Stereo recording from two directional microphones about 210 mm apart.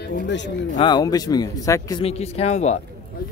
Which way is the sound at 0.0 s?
55° left (ahead or behind).